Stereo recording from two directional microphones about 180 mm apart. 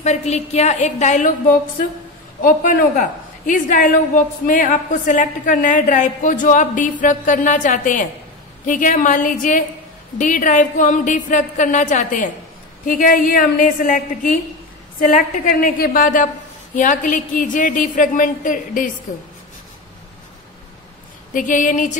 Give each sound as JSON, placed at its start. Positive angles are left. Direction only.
{"t": 0.0, "sound": "a woman's voice", "side_deg": 40}
{"t": 2.4, "sound": "a woman's voice", "side_deg": 50}
{"t": 21.3, "sound": "a woman's voice", "side_deg": 45}